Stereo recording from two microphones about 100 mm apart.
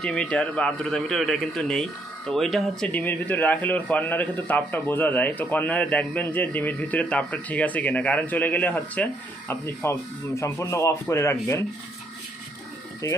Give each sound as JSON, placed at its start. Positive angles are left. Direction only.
{"t": 0.0, "sound": "a man's voice", "side_deg": 10}
{"t": 2.9, "sound": "a man's voice", "side_deg": 15}